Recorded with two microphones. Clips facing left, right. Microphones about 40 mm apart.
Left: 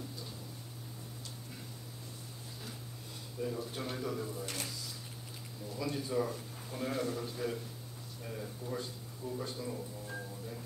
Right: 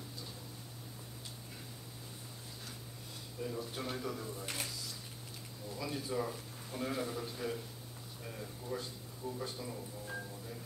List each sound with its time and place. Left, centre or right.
3.3 s speech: centre